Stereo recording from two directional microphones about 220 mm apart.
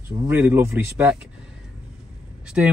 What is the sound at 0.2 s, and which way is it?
Speech, 10° right (ahead or behind).